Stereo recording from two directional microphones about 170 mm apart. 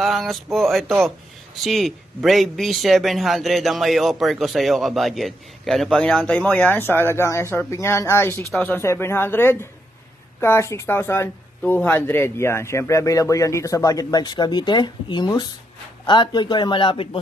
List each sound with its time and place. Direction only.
0.0 s a man's voice: centre (ahead or behind); by 17.2 s 30° left (ahead or behind)